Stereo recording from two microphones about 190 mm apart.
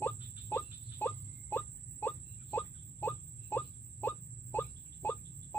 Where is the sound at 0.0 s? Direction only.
10° left (ahead or behind).